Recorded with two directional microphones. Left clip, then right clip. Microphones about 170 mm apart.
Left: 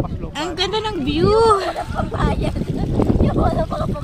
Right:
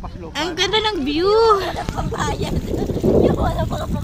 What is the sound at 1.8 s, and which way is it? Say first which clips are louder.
Speech: left 1 dB; 55° left (ahead or behind).